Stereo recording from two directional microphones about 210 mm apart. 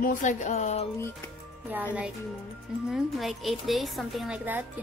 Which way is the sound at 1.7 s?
10° right (ahead or behind).